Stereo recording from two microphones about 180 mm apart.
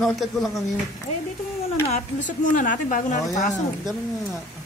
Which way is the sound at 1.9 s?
45° left (ahead or behind).